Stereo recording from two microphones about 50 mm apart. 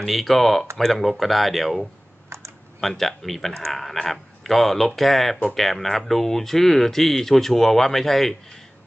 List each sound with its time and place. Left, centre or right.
0.0 s speech: centre
2.2 s typing: right
2.8 s speech: centre